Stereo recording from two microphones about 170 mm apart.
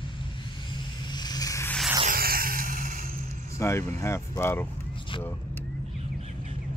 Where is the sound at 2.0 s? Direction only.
60° right (ahead or behind).